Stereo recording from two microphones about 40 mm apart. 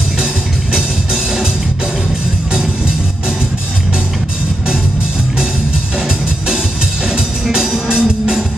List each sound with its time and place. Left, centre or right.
0.7 s music: centre
7.1 s music: centre